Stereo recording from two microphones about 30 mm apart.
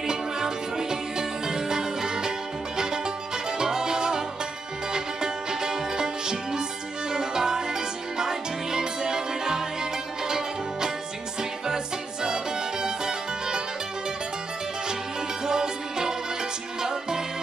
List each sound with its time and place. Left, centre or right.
0.0 s music: right
3.4 s music: right
15.4 s music: right